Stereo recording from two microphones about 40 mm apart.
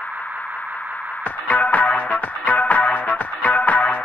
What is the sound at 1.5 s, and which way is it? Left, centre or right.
Music, left.